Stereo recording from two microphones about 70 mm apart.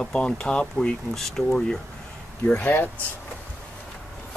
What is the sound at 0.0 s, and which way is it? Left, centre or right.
Speech, centre.